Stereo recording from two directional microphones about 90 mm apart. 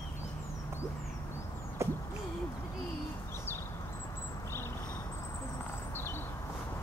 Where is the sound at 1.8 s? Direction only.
30° right (ahead or behind).